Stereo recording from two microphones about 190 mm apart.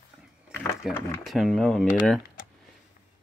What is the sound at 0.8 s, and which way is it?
Speech, centre (ahead or behind).